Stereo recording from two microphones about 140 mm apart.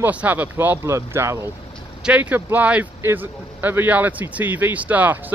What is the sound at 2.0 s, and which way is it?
A man's voice, 10° right (ahead or behind).